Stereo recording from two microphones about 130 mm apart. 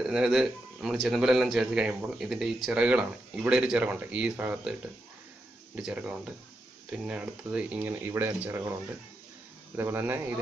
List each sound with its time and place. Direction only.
0.0 s speech: 5° right (ahead or behind)
5.8 s speech: 10° right (ahead or behind)
9.8 s speech: 15° right (ahead or behind)